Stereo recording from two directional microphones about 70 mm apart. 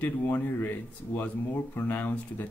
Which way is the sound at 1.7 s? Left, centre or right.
Left.